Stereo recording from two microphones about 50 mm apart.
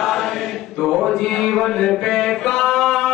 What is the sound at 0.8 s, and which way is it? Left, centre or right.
Mantra, centre.